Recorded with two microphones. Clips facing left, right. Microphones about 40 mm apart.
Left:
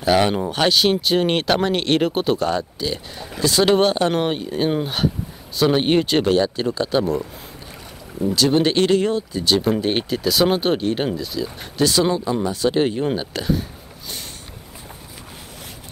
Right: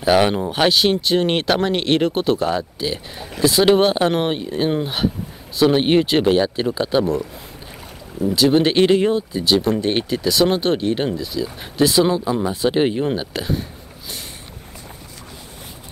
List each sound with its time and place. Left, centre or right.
0.0 s speech: centre
8.4 s speech: centre
8.7 s speech: centre
9.6 s speech: centre
12.4 s speech: centre
13.0 s speech: centre